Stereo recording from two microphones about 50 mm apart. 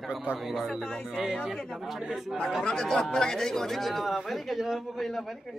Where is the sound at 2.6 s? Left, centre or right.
Centre.